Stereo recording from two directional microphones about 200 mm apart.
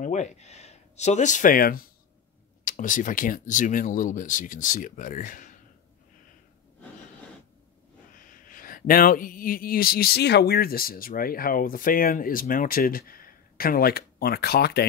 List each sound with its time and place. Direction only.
0.0 s speech: 35° left (ahead or behind)
8.1 s speech: 45° left (ahead or behind)